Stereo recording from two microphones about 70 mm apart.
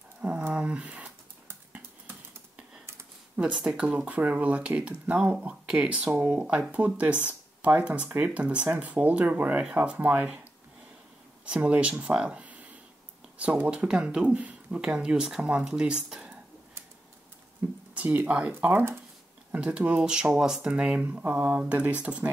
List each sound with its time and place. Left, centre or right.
0.5 s speech: centre
3.3 s speech: centre
11.4 s speech: centre
17.6 s a sound: right
17.9 s speech: right